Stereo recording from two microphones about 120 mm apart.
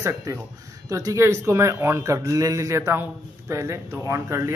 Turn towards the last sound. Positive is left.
turn(degrees=-25)  # may be behind; listen again after turning